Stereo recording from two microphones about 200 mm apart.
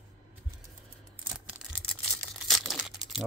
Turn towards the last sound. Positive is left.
turn(degrees=0)  # may be behind; listen again after turning